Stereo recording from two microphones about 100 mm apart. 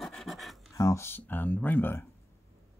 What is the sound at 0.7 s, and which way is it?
Speech, 30° left (ahead or behind).